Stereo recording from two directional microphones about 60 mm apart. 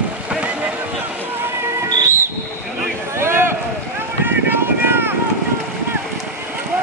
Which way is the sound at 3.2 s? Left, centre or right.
Right.